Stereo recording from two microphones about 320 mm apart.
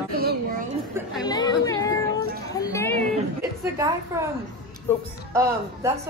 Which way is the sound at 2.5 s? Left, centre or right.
Centre.